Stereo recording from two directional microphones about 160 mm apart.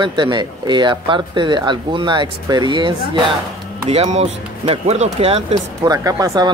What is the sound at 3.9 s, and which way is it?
Speech, 40° right (ahead or behind).